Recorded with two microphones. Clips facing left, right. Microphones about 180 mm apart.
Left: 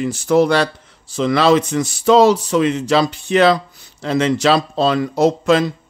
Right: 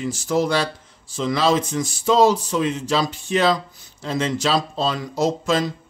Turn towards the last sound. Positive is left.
turn(degrees=65)  # may be behind; listen again after turning